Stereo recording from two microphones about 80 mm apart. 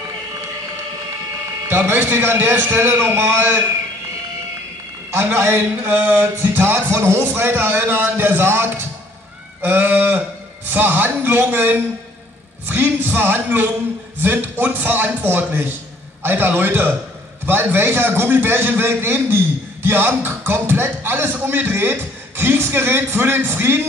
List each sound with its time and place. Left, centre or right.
1.7 s a man's voice: right
5.1 s a man's voice: right